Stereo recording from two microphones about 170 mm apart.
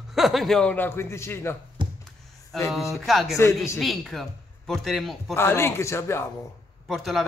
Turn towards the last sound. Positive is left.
turn(degrees=0)  # may be behind; listen again after turning